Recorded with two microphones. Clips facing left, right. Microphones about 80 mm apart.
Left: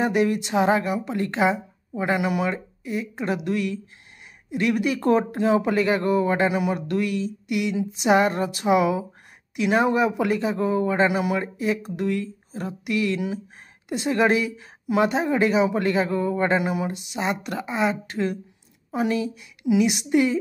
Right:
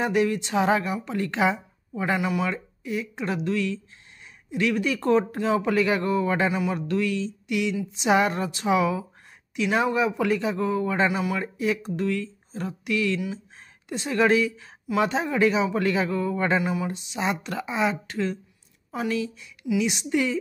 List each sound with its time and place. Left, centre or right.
0.0 s a woman's voice: centre
2.0 s speech: centre
2.5 s speech: centre
6.5 s a woman's voice: centre
11.4 s a woman's voice: centre
16.1 s speech: centre
16.9 s a woman's voice: centre
18.9 s a woman's voice: centre
19.9 s a woman's voice: centre